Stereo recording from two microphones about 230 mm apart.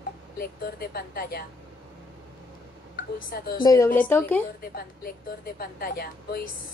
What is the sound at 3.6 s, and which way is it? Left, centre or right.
Speech, centre.